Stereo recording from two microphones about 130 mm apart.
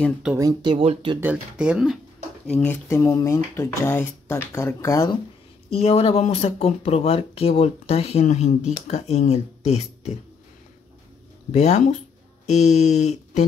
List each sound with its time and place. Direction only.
0.4 s speech: 30° right (ahead or behind)
0.7 s speech: 45° right (ahead or behind)
1.2 s speech: 10° right (ahead or behind)
2.4 s speech: 10° left (ahead or behind)
2.9 s speech: 25° left (ahead or behind)
5.7 s speech: 50° left (ahead or behind)
11.5 s speech: 60° left (ahead or behind)